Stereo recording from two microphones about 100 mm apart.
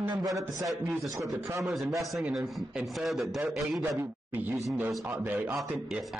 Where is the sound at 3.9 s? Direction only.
20° right (ahead or behind).